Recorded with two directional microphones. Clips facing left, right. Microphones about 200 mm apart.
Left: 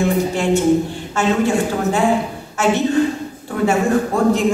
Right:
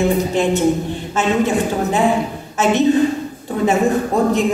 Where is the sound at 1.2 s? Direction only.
20° right (ahead or behind).